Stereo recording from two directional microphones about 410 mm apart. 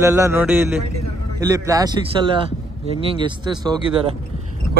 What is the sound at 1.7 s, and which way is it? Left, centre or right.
Speech, centre.